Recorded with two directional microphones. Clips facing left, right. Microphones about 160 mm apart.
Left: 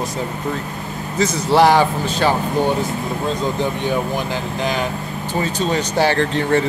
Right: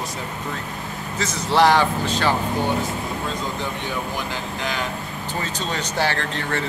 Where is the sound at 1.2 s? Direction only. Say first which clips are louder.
Left 4 dB; 10° left (ahead or behind).